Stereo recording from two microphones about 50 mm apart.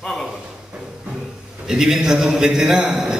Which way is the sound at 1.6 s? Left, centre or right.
Centre.